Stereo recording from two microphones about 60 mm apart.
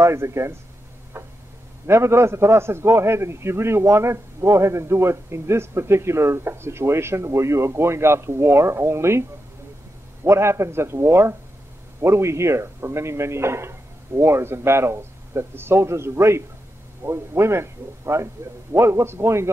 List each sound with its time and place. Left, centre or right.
0.0 s a man's voice: right
1.1 s tick-tock: right
1.9 s a man's voice: right
10.2 s a man's voice: right